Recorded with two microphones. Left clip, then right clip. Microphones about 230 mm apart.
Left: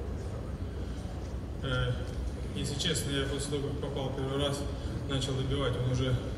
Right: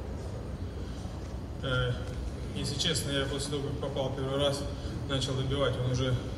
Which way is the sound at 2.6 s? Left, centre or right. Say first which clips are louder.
Right 2 dB; centre.